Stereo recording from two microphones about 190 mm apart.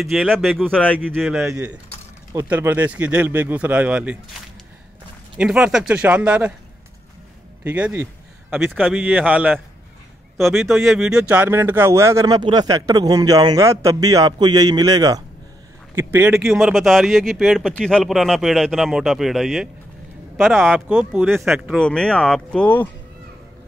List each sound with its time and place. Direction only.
0.0 s a man's voice: centre (ahead or behind)
5.4 s speech: 5° right (ahead or behind)
7.6 s a man's voice: 10° right (ahead or behind); by 22.8 s 5° left (ahead or behind)